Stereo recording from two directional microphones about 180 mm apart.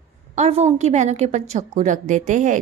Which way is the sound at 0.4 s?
35° right (ahead or behind).